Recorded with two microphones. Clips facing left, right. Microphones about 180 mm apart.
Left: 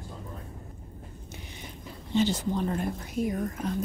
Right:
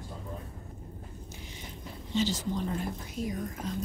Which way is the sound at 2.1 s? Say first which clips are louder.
Left 4 dB; 60° left (ahead or behind).